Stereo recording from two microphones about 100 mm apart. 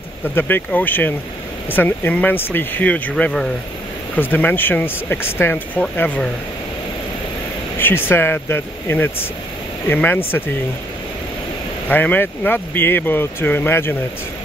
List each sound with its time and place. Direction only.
0.4 s speech: 20° left (ahead or behind)
7.8 s speech: 25° left (ahead or behind)
11.9 s speech: 15° left (ahead or behind)